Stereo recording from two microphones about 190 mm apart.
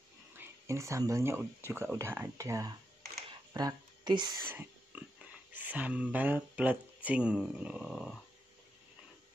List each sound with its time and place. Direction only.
0.4 s speech: 15° right (ahead or behind)
4.5 s whispering: 10° right (ahead or behind)
5.5 s speech: 10° right (ahead or behind)